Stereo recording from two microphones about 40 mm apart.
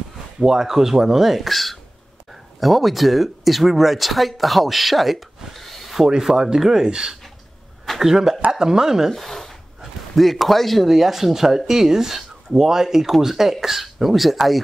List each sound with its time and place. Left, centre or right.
0.4 s speech: centre
6.3 s speech: centre
9.1 s speech: centre
10.9 s speech: centre